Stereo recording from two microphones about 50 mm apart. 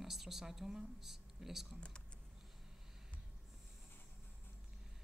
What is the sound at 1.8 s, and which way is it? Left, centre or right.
Speech, centre.